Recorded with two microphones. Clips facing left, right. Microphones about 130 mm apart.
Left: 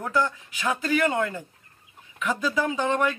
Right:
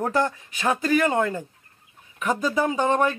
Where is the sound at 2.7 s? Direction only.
45° right (ahead or behind).